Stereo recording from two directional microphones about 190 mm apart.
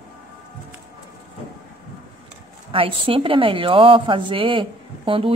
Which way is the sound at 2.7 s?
30° right (ahead or behind).